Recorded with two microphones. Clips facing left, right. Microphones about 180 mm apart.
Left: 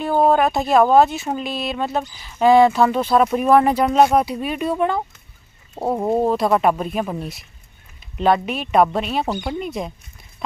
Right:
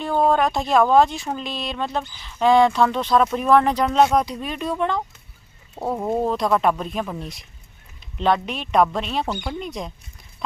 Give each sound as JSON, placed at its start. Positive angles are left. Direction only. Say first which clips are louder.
{"t": 0.3, "sound": "speech", "louder": "left 3 dB", "side_deg": 5}
{"t": 5.8, "sound": "speech", "louder": "left 4 dB", "side_deg": 25}
{"t": 6.2, "sound": "speech", "louder": "left 2 dB", "side_deg": 5}